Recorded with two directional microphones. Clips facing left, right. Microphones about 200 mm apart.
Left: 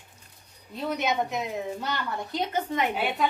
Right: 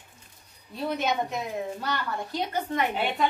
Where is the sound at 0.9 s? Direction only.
20° left (ahead or behind).